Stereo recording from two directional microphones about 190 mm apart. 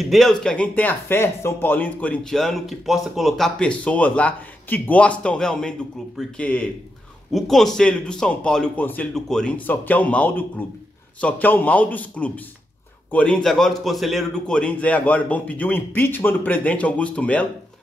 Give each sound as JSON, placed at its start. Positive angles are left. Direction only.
{"t": 0.0, "sound": "a man's voice", "side_deg": 0}